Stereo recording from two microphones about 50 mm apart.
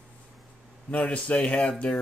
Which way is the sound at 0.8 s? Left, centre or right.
Left.